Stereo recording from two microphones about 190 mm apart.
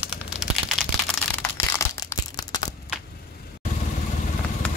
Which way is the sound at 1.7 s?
15° left (ahead or behind).